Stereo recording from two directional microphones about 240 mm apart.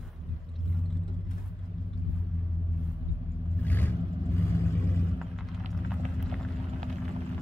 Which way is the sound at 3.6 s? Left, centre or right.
Centre.